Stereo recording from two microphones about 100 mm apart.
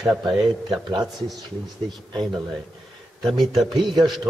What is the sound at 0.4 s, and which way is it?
Speech, 50° right (ahead or behind).